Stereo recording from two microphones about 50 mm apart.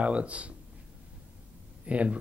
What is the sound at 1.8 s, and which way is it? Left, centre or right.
Speech, right.